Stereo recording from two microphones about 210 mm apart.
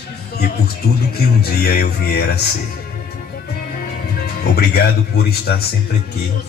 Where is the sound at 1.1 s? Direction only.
45° left (ahead or behind).